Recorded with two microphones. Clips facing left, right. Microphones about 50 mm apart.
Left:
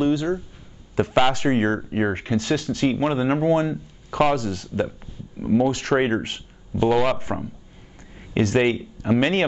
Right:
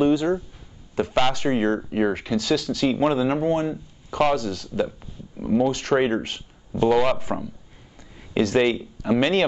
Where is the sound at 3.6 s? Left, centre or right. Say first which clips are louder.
Left 1 dB; left.